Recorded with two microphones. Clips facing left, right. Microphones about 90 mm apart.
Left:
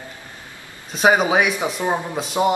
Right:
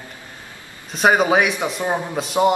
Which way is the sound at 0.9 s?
Centre (ahead or behind).